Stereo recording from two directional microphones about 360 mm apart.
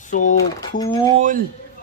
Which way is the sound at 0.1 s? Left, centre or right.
Left.